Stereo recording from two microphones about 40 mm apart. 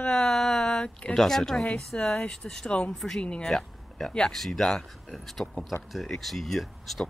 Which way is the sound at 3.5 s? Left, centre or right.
Centre.